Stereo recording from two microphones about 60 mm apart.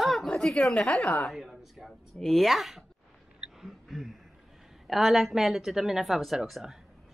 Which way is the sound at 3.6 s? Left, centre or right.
Centre.